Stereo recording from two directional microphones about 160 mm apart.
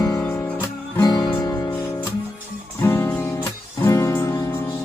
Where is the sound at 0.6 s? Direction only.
20° left (ahead or behind).